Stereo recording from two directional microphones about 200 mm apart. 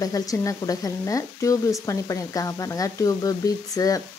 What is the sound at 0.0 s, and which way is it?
Speech, 15° left (ahead or behind).